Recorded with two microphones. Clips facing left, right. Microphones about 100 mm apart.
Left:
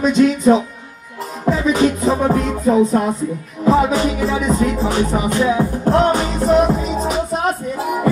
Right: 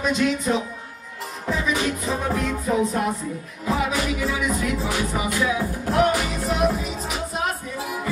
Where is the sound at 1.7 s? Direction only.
40° left (ahead or behind).